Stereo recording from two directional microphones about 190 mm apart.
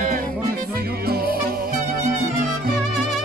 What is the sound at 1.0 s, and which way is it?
Music, 50° right (ahead or behind).